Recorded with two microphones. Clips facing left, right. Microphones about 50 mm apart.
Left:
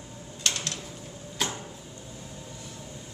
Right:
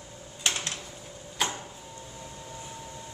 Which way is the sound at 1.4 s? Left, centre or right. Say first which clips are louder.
Right 1 dB; centre.